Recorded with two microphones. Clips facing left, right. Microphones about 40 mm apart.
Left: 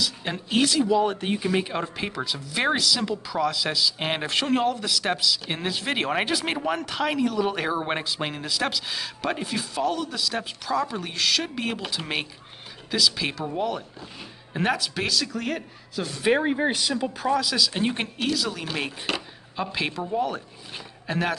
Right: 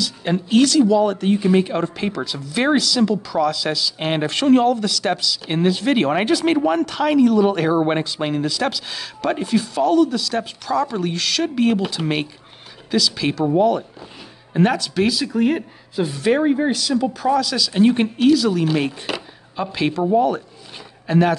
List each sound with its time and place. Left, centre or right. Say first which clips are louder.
0.0 s speech: right 7 dB; centre
1.4 s speech: right 7 dB; centre
15.0 s speech: right 9 dB; centre
16.2 s speech: right 4 dB; centre
17.3 s speech: right 3 dB; centre
20.2 s a sound: right 9 dB; centre